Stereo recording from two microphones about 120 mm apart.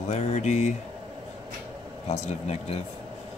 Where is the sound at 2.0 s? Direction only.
65° left (ahead or behind).